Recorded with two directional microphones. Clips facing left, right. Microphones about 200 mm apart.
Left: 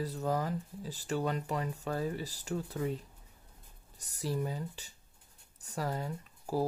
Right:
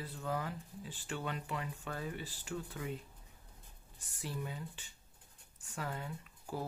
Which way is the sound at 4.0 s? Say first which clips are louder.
Left 8 dB; 40° left (ahead or behind).